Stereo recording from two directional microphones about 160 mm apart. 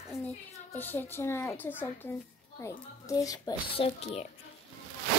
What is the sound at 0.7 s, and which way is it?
A child's voice, 10° left (ahead or behind).